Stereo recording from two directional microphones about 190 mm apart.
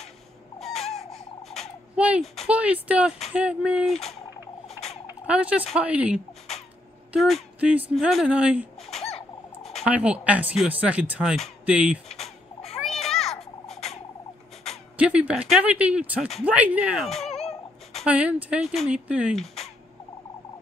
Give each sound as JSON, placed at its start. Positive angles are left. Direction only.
{"t": 0.6, "sound": "a sound", "side_deg": 0}
{"t": 1.1, "sound": "speech", "side_deg": 0}
{"t": 5.0, "sound": "turkey", "side_deg": -5}
{"t": 7.1, "sound": "speech", "side_deg": 0}
{"t": 12.8, "sound": "children playing", "side_deg": 0}
{"t": 15.0, "sound": "speech", "side_deg": -5}
{"t": 17.3, "sound": "whimper", "side_deg": 35}
{"t": 18.0, "sound": "speech", "side_deg": -5}